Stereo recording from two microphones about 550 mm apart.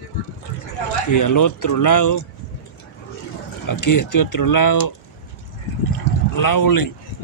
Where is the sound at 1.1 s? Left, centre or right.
Left.